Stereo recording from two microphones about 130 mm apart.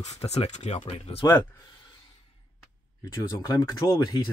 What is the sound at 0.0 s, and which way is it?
Speech, 55° left (ahead or behind).